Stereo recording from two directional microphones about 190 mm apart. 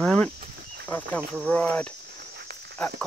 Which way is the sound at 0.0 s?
5° left (ahead or behind).